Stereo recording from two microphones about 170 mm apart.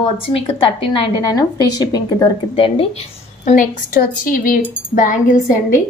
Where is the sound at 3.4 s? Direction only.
50° left (ahead or behind).